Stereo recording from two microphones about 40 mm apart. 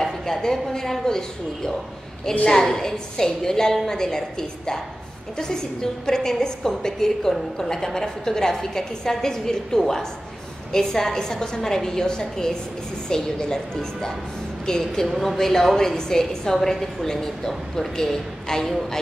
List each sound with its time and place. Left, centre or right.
0.0 s a woman's voice: centre